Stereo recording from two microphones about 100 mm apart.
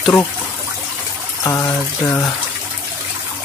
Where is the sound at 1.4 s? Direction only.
30° left (ahead or behind).